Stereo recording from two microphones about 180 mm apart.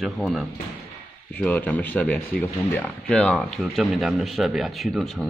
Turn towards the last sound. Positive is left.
turn(degrees=0)  # may be behind; listen again after turning